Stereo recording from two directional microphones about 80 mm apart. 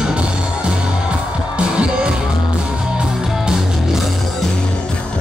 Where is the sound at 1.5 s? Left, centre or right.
Centre.